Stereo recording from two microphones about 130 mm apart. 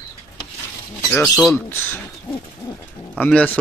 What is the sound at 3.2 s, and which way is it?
Speech, 10° left (ahead or behind).